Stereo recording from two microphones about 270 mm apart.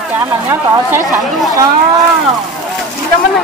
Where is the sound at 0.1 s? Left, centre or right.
Centre.